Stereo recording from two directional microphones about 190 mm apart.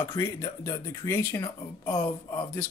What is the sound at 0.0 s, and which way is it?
Speech, 15° left (ahead or behind).